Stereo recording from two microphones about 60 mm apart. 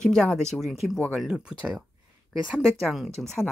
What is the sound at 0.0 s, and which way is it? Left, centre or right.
Speech, centre.